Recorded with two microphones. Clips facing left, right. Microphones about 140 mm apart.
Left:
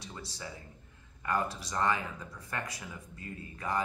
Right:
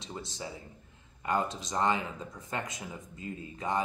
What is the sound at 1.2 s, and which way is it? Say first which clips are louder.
Speech: right 2 dB; 20° right (ahead or behind).